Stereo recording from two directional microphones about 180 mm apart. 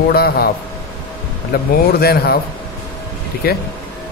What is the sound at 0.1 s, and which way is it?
Speech, 60° left (ahead or behind).